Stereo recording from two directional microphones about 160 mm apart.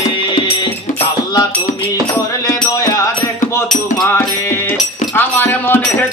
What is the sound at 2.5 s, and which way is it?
Music, 20° left (ahead or behind).